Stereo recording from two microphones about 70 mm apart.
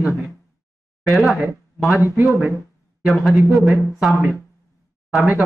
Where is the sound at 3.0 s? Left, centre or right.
Centre.